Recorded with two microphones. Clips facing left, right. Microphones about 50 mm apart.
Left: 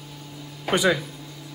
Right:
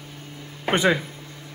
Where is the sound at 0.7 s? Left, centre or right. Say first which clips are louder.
Right 1 dB; right.